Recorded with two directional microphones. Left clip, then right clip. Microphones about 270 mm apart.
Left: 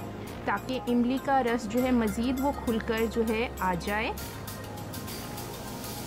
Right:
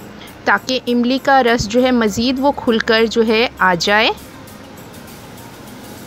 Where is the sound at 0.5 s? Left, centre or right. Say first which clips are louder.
Right 14 dB; centre.